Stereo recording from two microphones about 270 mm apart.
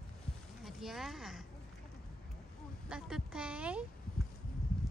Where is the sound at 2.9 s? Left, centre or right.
Centre.